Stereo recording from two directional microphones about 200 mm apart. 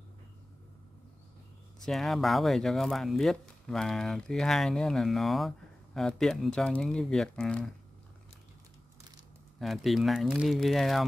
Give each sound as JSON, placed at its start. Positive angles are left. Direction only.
{"t": 1.9, "sound": "speech", "side_deg": 0}
{"t": 9.6, "sound": "speech", "side_deg": 0}